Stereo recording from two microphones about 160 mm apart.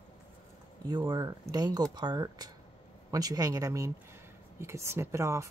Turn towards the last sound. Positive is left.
turn(degrees=-20)  # may be behind; listen again after turning